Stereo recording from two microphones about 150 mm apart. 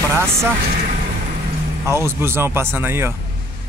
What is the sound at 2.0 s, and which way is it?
Speech, 15° right (ahead or behind).